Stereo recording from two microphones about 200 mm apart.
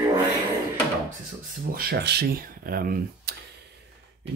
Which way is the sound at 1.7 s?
50° right (ahead or behind).